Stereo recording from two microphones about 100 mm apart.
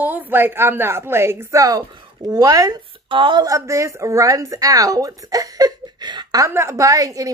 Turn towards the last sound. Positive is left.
turn(degrees=-35)  # may be behind; listen again after turning